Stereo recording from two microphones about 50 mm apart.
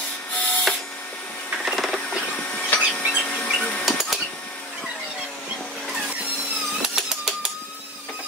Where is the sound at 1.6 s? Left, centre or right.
Centre.